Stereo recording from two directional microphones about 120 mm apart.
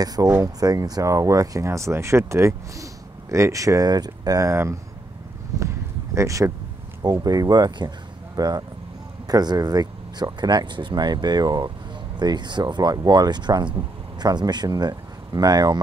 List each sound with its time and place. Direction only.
0.0 s speech: 30° right (ahead or behind)
6.1 s speech: 25° right (ahead or behind)